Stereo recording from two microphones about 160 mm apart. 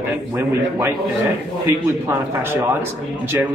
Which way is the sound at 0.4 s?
20° right (ahead or behind).